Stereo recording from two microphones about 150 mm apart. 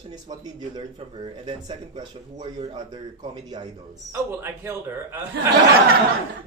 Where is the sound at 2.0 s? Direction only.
25° right (ahead or behind).